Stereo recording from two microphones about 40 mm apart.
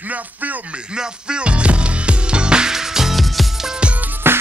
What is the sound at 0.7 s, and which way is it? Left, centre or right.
Music, right.